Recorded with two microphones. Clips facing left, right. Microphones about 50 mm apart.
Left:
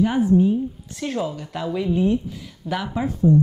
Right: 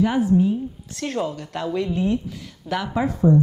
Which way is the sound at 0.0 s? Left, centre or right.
Centre.